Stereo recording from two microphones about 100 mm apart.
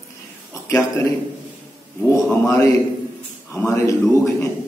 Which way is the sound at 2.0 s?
10° left (ahead or behind).